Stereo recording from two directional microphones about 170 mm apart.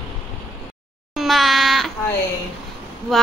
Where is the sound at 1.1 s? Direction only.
Centre (ahead or behind).